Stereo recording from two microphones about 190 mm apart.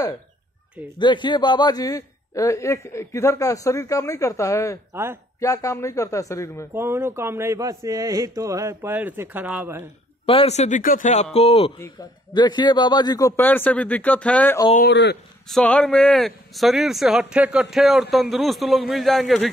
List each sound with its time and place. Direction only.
0.9 s a man's voice: 25° left (ahead or behind)
4.9 s speech: 10° right (ahead or behind)
5.4 s a man's voice: 15° left (ahead or behind)
6.7 s speech: 10° right (ahead or behind)
10.2 s a man's voice: 30° left (ahead or behind)
13.4 s a man's voice: 10° left (ahead or behind)
14.9 s speech: 65° left (ahead or behind)
15.4 s speech: 5° left (ahead or behind)